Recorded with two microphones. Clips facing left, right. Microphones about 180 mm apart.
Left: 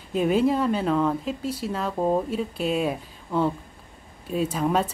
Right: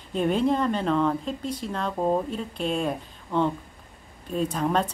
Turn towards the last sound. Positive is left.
turn(degrees=5)  # may be behind; listen again after turning